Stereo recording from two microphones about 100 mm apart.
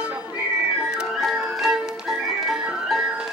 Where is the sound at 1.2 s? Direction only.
Centre (ahead or behind).